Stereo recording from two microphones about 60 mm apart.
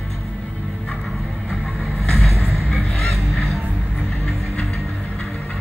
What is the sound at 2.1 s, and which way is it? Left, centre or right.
Music, centre.